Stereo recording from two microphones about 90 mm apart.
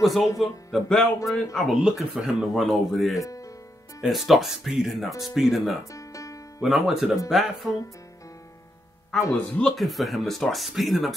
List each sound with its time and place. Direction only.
0.0 s speech: centre (ahead or behind)
3.3 s music: 40° left (ahead or behind)
4.0 s speech: centre (ahead or behind)
5.9 s music: 35° left (ahead or behind)
6.6 s speech: centre (ahead or behind)
9.1 s speech: 5° left (ahead or behind)